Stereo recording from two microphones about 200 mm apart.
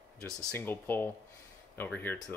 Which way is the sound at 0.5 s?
10° left (ahead or behind).